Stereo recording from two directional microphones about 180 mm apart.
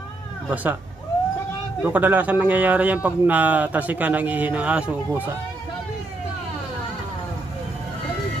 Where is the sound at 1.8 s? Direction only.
10° right (ahead or behind).